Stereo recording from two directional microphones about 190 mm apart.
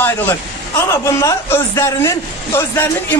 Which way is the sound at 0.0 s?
15° left (ahead or behind).